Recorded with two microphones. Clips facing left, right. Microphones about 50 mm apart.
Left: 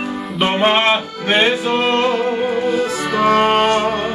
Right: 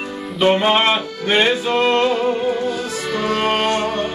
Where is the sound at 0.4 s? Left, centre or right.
Left.